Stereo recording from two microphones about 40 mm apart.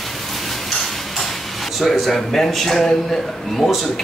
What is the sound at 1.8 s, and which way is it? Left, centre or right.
Speech, centre.